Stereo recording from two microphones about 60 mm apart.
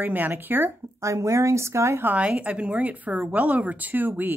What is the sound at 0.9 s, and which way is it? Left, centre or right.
Speech, right.